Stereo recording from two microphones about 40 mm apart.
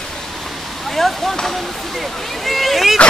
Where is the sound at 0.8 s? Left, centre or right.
Centre.